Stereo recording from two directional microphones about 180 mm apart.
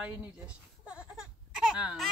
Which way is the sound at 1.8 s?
5° right (ahead or behind).